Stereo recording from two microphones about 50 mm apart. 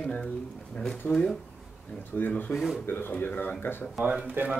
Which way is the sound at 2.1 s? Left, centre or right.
Left.